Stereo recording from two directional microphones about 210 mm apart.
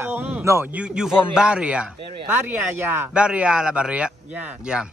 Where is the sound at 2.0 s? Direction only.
25° right (ahead or behind).